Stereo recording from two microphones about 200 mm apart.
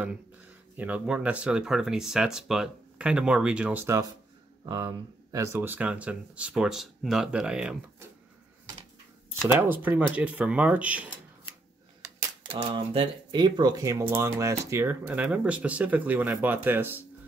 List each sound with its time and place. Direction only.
0.7 s speech: 5° right (ahead or behind)
9.5 s speech: 10° right (ahead or behind)
12.4 s speech: 25° right (ahead or behind); by 17.0 s 10° right (ahead or behind)